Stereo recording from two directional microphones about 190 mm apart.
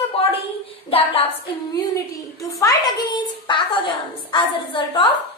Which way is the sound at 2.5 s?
20° left (ahead or behind).